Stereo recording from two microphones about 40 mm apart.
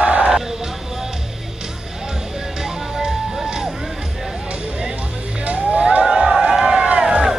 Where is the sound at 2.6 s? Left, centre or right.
Centre.